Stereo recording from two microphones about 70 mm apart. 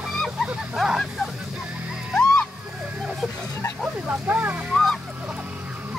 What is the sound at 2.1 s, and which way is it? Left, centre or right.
Music, centre.